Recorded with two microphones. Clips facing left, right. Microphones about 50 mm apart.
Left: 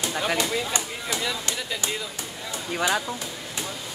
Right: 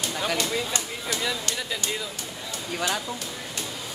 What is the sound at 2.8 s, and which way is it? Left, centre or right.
Speech, centre.